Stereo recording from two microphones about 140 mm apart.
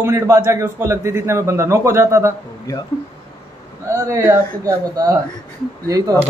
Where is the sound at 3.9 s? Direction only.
20° right (ahead or behind).